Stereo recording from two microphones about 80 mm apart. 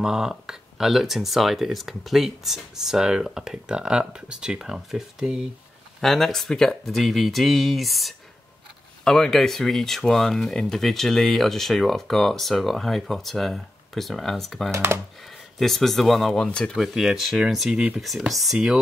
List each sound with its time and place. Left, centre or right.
0.0 s speech: centre
5.9 s speech: centre
14.7 s speech: right
15.6 s speech: centre
16.7 s speech: centre